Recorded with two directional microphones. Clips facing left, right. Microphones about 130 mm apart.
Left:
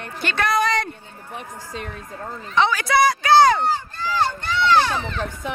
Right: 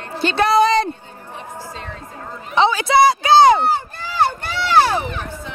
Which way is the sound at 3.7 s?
60° right (ahead or behind).